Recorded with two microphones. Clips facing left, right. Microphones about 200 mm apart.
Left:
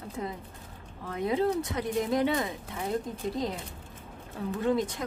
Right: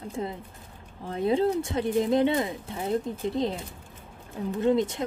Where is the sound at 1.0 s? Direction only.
30° right (ahead or behind).